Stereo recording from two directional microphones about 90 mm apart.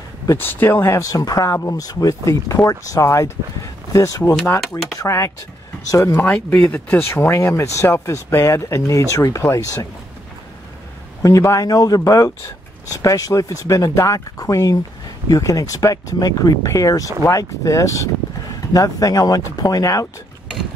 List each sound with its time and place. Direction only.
0.4 s speech: 25° left (ahead or behind)
6.1 s speech: 20° left (ahead or behind)
11.2 s speech: 35° left (ahead or behind)